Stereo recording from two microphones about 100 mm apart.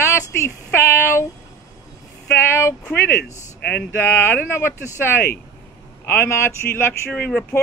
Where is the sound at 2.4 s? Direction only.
25° left (ahead or behind).